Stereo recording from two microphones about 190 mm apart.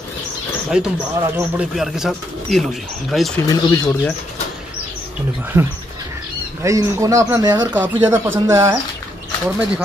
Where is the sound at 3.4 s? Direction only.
20° left (ahead or behind).